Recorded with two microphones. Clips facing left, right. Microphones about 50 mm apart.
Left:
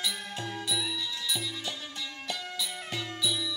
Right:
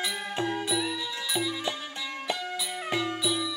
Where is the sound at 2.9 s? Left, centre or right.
Centre.